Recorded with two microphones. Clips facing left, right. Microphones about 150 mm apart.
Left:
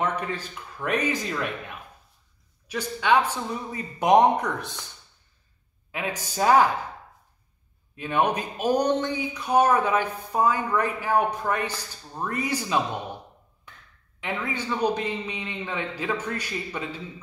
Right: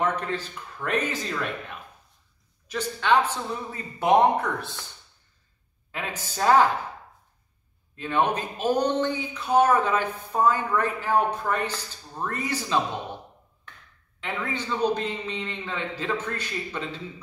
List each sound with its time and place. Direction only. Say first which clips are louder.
0.0 s speech: right 1 dB; 10° left (ahead or behind)
2.7 s speech: even; 10° left (ahead or behind)
5.9 s speech: left 3 dB; 15° left (ahead or behind)
7.9 s speech: even; 10° left (ahead or behind)
14.2 s speech: left 1 dB; 10° left (ahead or behind)